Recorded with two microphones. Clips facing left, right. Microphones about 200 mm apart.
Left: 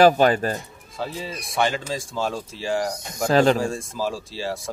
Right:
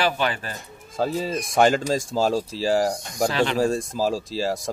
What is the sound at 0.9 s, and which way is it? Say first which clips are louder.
Speech: right 6 dB; 45° right (ahead or behind).